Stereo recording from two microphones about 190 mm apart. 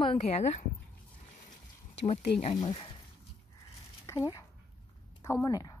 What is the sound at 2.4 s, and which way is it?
Speech, 25° left (ahead or behind).